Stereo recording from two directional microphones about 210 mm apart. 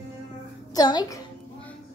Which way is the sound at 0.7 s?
20° left (ahead or behind).